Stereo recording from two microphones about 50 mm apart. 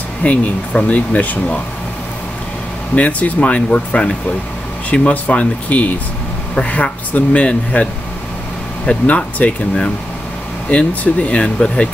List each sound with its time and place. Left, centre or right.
0.2 s speech: left
3.0 s speech: left
9.0 s speech: left
10.7 s speech: left